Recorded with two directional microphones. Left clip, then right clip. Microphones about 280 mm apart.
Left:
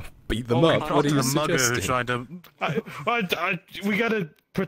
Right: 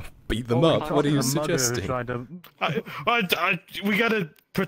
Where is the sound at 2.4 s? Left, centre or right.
Centre.